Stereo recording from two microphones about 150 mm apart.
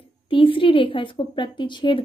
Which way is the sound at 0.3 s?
35° left (ahead or behind).